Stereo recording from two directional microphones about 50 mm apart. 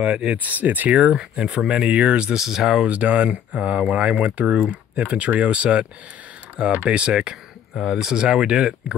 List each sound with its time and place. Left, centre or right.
0.1 s speech: centre
0.4 s speech: right
0.9 s speech: centre
2.3 s speech: centre
2.9 s speech: right
6.9 s speech: right
7.7 s speech: centre